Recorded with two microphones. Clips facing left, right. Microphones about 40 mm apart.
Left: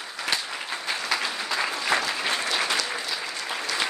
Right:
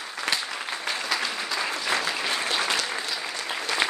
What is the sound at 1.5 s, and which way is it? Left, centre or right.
Applause, left.